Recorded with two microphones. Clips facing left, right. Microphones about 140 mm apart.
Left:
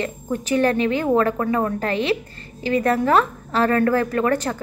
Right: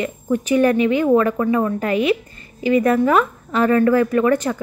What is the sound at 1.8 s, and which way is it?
Speech, 10° right (ahead or behind).